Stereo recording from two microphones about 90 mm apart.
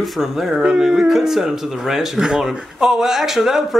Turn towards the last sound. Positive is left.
turn(degrees=-5)  # may be behind; listen again after turning